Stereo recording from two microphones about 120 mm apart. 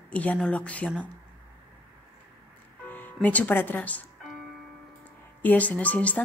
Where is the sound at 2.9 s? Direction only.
15° left (ahead or behind).